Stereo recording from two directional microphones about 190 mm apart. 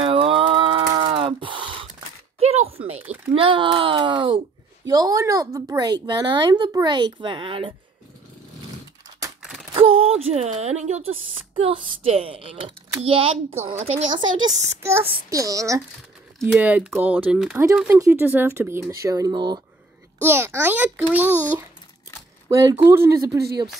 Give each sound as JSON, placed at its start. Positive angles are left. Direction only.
{"t": 0.0, "sound": "a sound", "side_deg": -30}
{"t": 3.3, "sound": "speech", "side_deg": -25}
{"t": 9.4, "sound": "a sound", "side_deg": -5}
{"t": 9.8, "sound": "speech", "side_deg": -30}
{"t": 14.6, "sound": "speech", "side_deg": -15}
{"t": 16.3, "sound": "speech", "side_deg": -5}
{"t": 20.2, "sound": "speech", "side_deg": -10}
{"t": 22.5, "sound": "speech", "side_deg": -15}